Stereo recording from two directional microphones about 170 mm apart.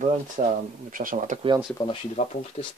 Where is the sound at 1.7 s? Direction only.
30° left (ahead or behind).